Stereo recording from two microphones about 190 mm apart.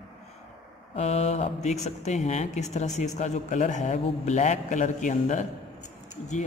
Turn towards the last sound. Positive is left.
turn(degrees=40)  # may be behind; listen again after turning